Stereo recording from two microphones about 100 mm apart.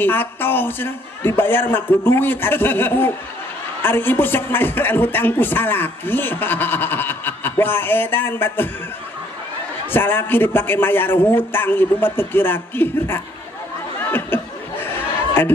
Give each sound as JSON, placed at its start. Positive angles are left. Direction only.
{"t": 0.0, "sound": "a man's voice", "side_deg": 20}
{"t": 9.8, "sound": "a man's voice", "side_deg": 20}
{"t": 13.9, "sound": "a sound", "side_deg": 20}